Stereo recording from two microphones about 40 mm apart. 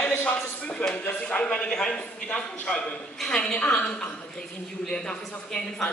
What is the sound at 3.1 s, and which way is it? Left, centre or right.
Speech, centre.